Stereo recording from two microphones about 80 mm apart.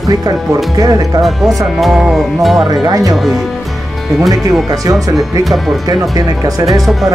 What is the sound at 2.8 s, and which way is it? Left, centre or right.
Speech, right.